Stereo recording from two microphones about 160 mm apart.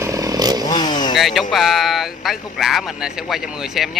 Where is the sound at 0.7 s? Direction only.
25° left (ahead or behind).